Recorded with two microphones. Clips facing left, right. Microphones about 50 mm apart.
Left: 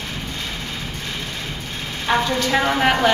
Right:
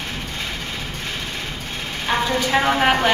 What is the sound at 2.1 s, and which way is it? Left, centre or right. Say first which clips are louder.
A woman's voice: left 1 dB; centre.